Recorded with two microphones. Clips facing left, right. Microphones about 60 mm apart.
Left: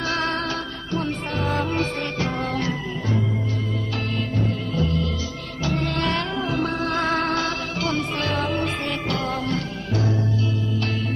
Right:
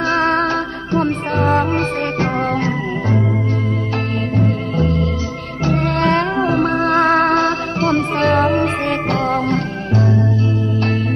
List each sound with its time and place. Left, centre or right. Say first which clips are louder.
0.1 s music: right 11 dB; right
4.4 s music: right 7 dB; right